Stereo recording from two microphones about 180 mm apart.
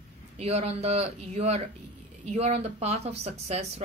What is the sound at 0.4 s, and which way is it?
A woman's voice, 35° right (ahead or behind).